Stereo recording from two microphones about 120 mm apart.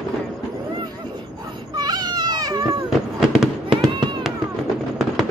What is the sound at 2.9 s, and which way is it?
Fireworks, 5° right (ahead or behind).